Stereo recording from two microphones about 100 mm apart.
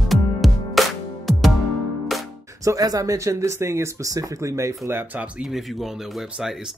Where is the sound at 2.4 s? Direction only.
35° right (ahead or behind).